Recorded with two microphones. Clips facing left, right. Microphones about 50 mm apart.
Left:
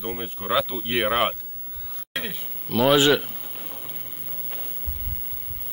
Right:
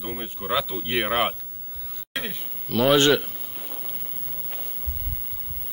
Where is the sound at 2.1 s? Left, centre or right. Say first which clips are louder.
Even; centre.